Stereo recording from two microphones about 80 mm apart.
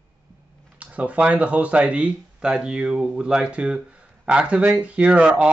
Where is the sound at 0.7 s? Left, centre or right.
Centre.